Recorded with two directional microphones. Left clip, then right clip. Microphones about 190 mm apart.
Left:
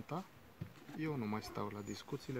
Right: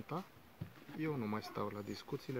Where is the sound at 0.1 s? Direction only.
15° left (ahead or behind).